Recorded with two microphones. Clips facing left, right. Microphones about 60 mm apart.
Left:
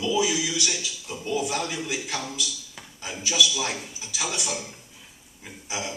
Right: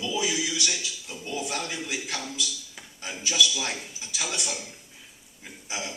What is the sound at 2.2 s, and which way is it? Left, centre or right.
A man's voice, centre.